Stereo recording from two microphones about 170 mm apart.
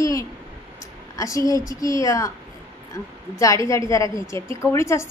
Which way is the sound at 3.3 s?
20° left (ahead or behind).